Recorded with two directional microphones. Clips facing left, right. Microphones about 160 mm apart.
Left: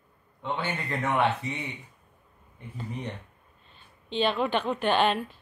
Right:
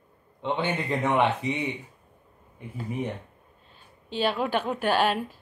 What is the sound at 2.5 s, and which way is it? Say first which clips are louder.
Speech: right 5 dB; 10° right (ahead or behind).